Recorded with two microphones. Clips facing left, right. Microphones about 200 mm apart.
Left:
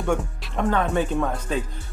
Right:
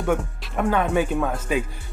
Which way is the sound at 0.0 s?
5° right (ahead or behind).